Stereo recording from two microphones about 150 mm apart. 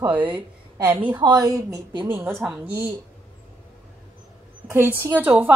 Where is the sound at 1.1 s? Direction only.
25° right (ahead or behind).